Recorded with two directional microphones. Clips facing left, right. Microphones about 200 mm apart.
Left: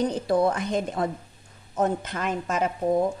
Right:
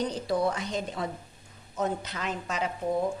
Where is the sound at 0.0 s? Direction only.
55° left (ahead or behind).